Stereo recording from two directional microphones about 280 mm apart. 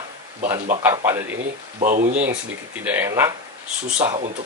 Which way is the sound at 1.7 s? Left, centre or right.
Right.